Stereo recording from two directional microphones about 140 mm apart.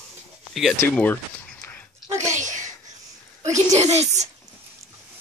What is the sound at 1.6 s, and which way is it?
Dog, 15° left (ahead or behind).